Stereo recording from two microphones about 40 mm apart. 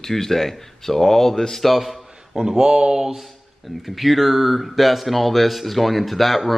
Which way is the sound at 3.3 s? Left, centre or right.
Centre.